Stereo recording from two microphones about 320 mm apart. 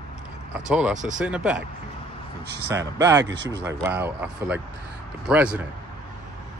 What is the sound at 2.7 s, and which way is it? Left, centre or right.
Speech, centre.